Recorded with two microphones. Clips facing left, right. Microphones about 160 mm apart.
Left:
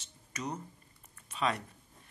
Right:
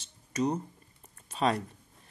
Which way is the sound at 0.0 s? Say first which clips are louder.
Right 10 dB; 30° right (ahead or behind).